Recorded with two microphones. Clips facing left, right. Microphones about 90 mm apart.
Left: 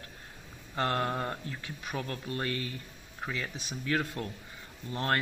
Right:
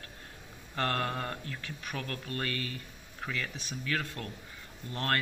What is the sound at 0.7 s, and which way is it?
Speech, 20° left (ahead or behind).